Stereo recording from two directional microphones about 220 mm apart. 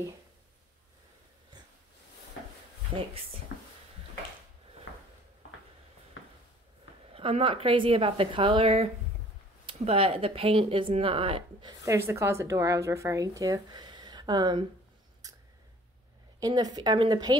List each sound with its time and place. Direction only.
4.9 s a sound: 60° left (ahead or behind)
6.2 s a sound: 60° left (ahead or behind)
7.1 s speech: 25° right (ahead or behind)
12.1 s speech: 10° right (ahead or behind)
15.2 s scissors: 15° right (ahead or behind)
16.3 s speech: 15° right (ahead or behind)